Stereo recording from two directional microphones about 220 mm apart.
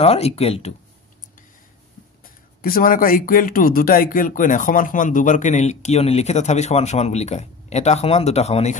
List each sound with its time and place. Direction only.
0.0 s speech: 30° left (ahead or behind)
2.2 s speech: 40° left (ahead or behind)